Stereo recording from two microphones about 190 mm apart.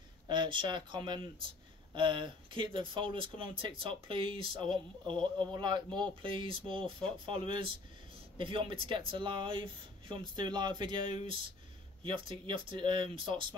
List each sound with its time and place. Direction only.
0.3 s speech: 25° right (ahead or behind)